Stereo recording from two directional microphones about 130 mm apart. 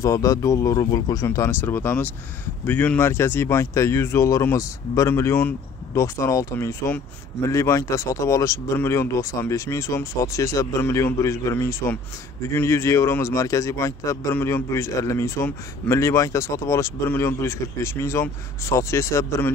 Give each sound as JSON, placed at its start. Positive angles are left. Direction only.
{"t": 0.0, "sound": "a man's voice", "side_deg": 25}